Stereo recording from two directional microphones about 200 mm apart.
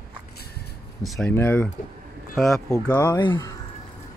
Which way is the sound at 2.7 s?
10° left (ahead or behind).